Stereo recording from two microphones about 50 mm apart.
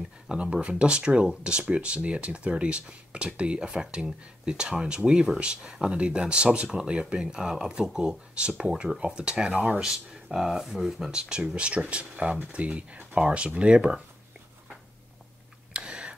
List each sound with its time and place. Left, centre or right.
0.3 s speech: centre
10.3 s speech: centre
11.1 s speech: centre
15.7 s tick: centre